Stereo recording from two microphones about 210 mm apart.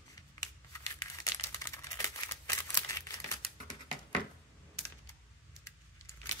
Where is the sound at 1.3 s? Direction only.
15° left (ahead or behind).